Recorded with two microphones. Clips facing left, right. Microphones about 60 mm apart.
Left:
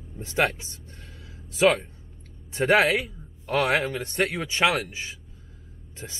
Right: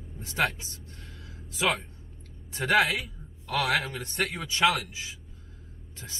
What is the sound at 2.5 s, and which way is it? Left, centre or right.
A man's voice, left.